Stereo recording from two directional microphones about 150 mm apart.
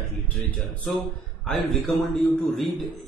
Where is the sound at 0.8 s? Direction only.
Centre (ahead or behind).